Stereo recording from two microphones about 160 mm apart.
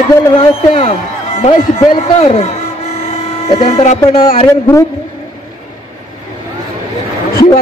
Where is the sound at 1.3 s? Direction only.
35° left (ahead or behind).